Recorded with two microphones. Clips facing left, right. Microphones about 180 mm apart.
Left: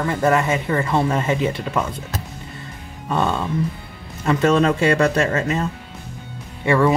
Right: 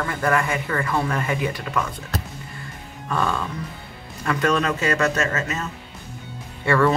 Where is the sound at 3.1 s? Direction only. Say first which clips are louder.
Left 4 dB; 25° left (ahead or behind).